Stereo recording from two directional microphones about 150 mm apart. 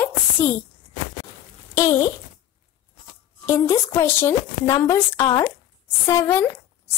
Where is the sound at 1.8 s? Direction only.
25° left (ahead or behind).